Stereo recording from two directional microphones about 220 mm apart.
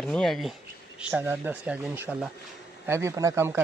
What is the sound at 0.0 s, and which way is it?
Speech, centre (ahead or behind).